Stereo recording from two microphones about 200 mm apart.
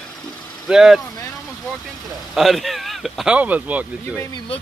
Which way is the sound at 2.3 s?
Centre (ahead or behind).